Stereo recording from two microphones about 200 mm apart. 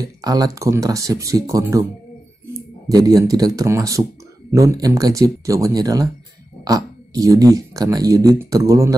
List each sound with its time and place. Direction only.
0.0 s speech: 20° right (ahead or behind)
2.9 s speech: 15° right (ahead or behind)